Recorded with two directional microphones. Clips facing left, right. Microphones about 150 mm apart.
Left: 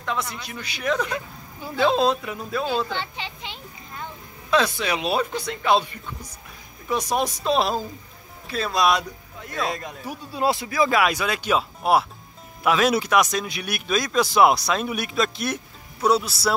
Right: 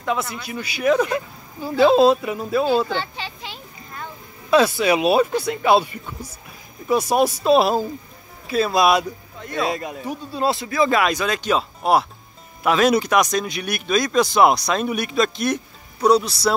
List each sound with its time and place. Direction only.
0.0 s speech: 10° right (ahead or behind)
3.0 s a sound: 20° left (ahead or behind)
4.5 s speech: 10° right (ahead or behind)
10.0 s speech: 15° left (ahead or behind)